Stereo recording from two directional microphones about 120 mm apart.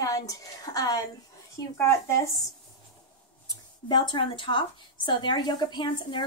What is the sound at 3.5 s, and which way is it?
A woman's voice, 40° left (ahead or behind).